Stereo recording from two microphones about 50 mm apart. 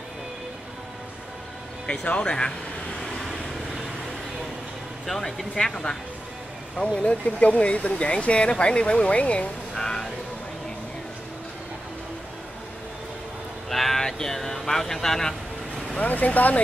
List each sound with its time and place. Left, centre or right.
1.9 s speech: centre
5.0 s speech: centre
7.0 s speech: left
9.8 s music: centre
13.7 s speech: centre
16.0 s speech: left